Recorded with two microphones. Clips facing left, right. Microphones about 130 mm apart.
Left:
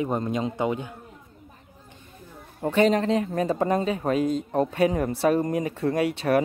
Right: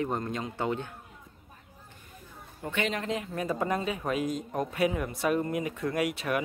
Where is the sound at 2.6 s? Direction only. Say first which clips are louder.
Left 11 dB; 35° left (ahead or behind).